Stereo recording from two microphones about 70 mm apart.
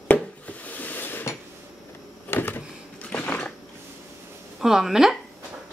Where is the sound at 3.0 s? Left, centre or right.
Centre.